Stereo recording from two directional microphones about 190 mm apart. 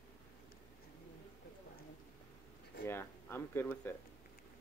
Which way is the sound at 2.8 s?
10° left (ahead or behind).